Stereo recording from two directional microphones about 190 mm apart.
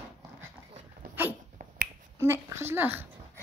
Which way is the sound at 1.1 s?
10° right (ahead or behind).